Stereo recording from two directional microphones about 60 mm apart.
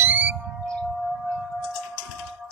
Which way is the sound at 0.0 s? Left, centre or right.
Right.